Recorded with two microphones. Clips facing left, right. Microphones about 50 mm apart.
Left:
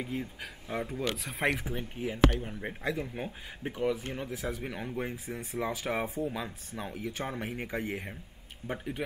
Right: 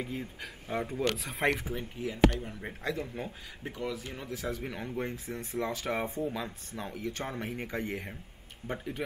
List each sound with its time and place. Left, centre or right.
0.0 s speech: centre
1.8 s speech: left
2.3 s speech: centre
3.6 s speech: left
4.3 s speech: centre